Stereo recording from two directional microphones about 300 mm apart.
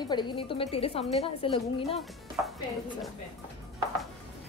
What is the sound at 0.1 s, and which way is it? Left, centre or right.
A woman's voice, centre.